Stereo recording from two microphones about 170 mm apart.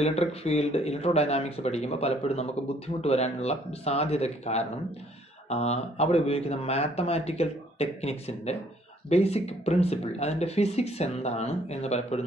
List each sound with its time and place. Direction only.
0.0 s speech: 40° left (ahead or behind)